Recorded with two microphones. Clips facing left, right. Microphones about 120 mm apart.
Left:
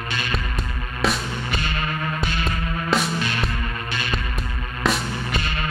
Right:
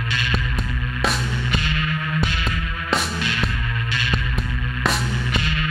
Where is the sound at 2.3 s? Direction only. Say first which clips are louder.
Left 1 dB; 40° left (ahead or behind).